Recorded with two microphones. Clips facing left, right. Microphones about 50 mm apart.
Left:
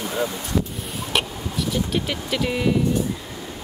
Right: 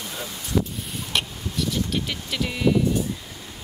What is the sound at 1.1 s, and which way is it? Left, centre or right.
Speech, centre.